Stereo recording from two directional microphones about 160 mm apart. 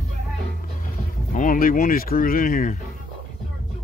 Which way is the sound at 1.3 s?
55° left (ahead or behind).